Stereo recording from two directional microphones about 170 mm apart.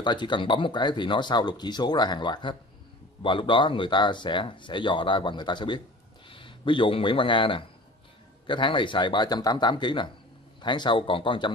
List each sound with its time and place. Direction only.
0.0 s speech: 25° left (ahead or behind)